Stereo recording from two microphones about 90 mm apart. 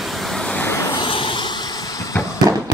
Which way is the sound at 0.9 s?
70° left (ahead or behind).